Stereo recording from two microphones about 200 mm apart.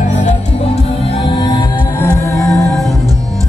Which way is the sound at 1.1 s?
25° left (ahead or behind).